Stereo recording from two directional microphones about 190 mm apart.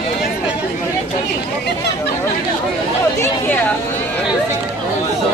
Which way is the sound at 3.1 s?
10° left (ahead or behind).